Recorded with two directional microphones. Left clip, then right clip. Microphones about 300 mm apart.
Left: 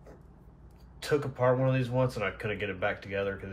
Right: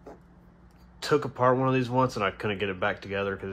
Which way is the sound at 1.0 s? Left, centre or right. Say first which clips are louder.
Right 4 dB; centre.